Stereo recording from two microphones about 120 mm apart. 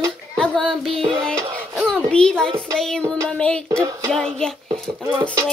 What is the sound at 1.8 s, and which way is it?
A child's voice, 5° left (ahead or behind).